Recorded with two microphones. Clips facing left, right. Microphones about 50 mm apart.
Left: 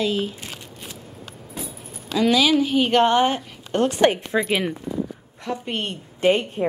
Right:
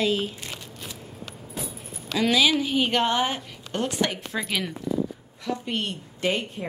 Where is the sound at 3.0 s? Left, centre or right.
Left.